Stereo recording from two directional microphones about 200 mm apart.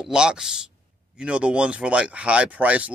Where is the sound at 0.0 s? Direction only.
5° right (ahead or behind).